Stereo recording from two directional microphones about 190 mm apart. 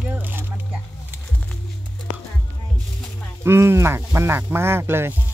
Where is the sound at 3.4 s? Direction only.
15° right (ahead or behind).